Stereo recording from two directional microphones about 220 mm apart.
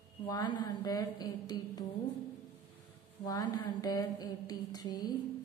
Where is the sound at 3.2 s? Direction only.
20° left (ahead or behind).